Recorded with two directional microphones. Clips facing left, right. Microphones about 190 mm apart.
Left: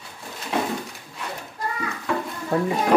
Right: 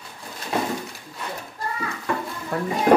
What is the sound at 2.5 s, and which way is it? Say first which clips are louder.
Speech: left 4 dB; 25° left (ahead or behind).